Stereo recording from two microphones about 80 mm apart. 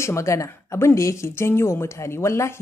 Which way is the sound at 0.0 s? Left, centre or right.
Left.